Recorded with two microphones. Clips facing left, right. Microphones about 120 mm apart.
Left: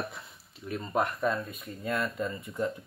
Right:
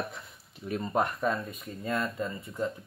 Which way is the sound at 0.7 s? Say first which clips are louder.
Right 1 dB; 5° right (ahead or behind).